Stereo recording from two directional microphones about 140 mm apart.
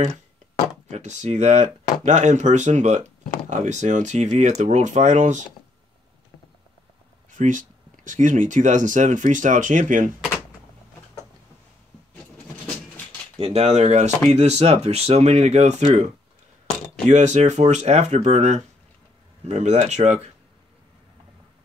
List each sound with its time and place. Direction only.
0.8 s speech: 55° right (ahead or behind)
7.2 s speech: 65° right (ahead or behind)
13.4 s speech: 50° right (ahead or behind)
17.1 s speech: 55° right (ahead or behind)